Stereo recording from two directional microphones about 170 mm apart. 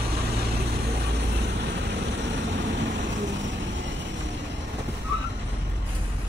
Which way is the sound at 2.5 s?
90° right.